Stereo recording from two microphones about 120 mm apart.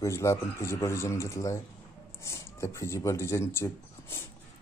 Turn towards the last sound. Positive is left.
turn(degrees=20)  # may be behind; listen again after turning